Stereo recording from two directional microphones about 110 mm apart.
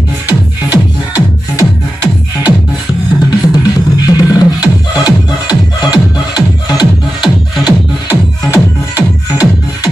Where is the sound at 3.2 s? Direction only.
35° left (ahead or behind).